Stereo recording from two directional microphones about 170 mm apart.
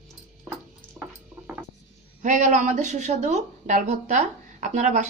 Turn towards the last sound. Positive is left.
turn(degrees=-45)  # may be behind; listen again after turning